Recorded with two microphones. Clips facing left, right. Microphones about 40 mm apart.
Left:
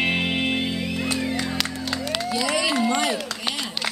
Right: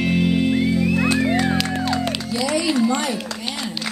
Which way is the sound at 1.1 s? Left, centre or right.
Right.